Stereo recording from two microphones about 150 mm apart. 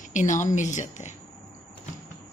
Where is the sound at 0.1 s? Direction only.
55° left (ahead or behind).